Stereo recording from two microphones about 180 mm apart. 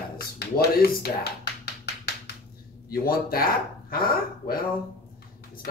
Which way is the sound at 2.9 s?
55° left (ahead or behind).